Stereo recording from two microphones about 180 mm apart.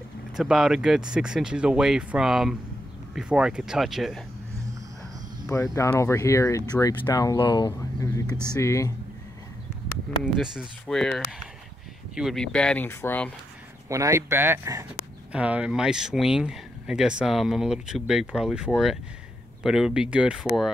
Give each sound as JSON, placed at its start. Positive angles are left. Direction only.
{"t": 0.4, "sound": "speech", "side_deg": 0}
{"t": 5.5, "sound": "speech", "side_deg": 15}
{"t": 10.3, "sound": "speech", "side_deg": 0}
{"t": 13.8, "sound": "speech", "side_deg": -15}